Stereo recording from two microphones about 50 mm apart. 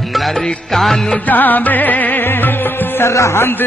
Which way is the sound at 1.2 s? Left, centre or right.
Left.